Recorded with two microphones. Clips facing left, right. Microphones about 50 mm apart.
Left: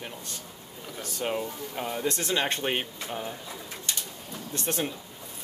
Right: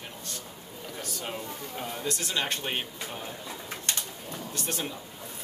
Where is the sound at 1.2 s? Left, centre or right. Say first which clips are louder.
Left 9 dB; centre.